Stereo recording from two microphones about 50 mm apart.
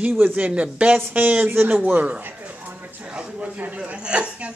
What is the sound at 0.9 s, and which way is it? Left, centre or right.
Speech, right.